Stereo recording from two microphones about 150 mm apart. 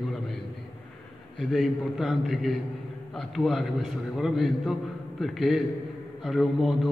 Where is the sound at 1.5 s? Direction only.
Centre (ahead or behind).